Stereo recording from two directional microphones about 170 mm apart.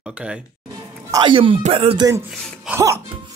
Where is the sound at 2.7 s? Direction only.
15° right (ahead or behind).